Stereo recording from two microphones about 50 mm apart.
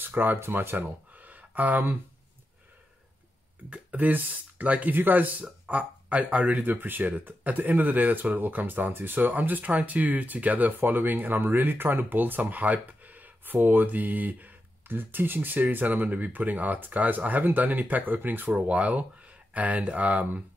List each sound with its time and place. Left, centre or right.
0.0 s speech: right
3.7 s speech: right
5.7 s speech: right
18.5 s speech: right